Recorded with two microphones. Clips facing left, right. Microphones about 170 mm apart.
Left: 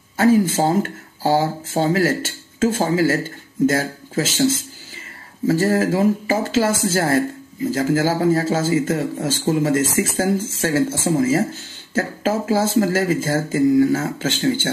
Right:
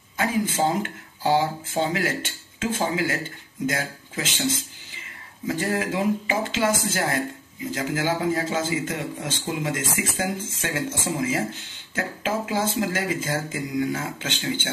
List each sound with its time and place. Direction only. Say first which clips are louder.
0.2 s speech: left 8 dB; 40° left (ahead or behind)
5.5 s speech: left 8 dB; 40° left (ahead or behind)